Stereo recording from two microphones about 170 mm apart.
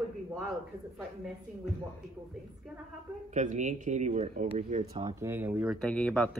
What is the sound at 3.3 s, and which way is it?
Speech, 45° right (ahead or behind).